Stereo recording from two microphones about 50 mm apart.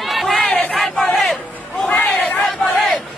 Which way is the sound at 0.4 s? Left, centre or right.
Left.